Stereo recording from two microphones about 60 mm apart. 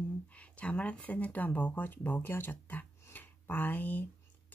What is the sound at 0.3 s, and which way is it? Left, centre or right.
Speech, left.